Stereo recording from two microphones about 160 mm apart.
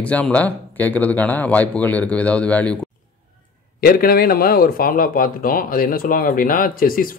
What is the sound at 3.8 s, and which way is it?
Speech, 65° left (ahead or behind).